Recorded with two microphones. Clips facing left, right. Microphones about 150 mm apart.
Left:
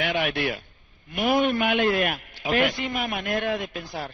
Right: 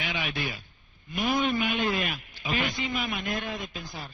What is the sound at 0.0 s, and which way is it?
A man's voice, 60° left (ahead or behind).